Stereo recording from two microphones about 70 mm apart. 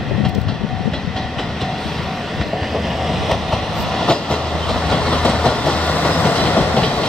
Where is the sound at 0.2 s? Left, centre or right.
Centre.